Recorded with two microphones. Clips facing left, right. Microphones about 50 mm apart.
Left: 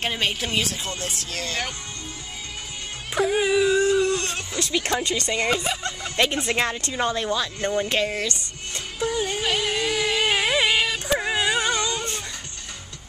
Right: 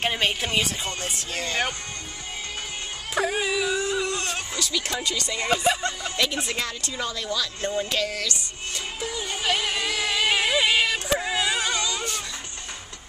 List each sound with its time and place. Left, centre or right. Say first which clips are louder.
0.0 s speech: right 1 dB; centre
3.2 s speech: left 3 dB; centre
3.7 s a sound: left 6 dB; centre
4.6 s speech: left 7 dB; left
5.6 s speech: right 4 dB; centre
6.1 s speech: left 7 dB; left
9.4 s music: left 1 dB; centre
11.1 s a sound: left 2 dB; left